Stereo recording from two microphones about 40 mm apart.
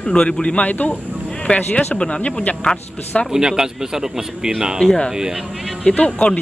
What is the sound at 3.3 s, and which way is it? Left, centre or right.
A man's voice, centre.